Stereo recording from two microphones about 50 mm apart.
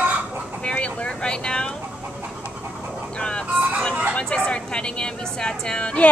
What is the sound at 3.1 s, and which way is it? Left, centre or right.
Chicken, centre.